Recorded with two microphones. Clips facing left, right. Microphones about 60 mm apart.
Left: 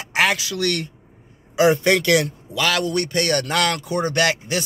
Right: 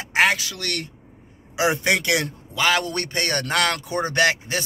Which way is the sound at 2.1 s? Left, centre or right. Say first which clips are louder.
Left 4 dB; right.